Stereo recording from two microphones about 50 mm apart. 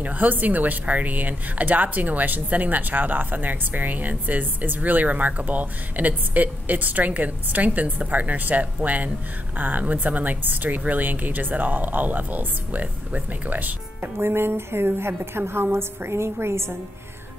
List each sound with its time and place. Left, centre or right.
0.0 s speech: right